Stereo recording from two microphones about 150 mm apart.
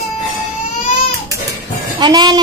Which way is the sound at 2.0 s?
30° right (ahead or behind).